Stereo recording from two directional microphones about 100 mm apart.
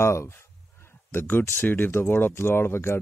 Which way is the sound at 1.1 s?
20° left (ahead or behind).